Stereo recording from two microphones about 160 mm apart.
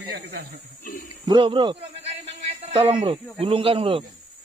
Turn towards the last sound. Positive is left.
turn(degrees=-35)  # may be behind; listen again after turning